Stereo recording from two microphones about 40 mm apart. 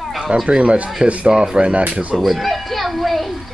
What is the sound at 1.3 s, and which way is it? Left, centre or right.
Speech, centre.